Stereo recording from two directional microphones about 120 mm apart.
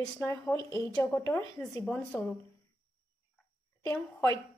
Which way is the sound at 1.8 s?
10° left (ahead or behind).